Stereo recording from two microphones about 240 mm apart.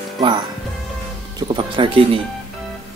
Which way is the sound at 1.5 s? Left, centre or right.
Right.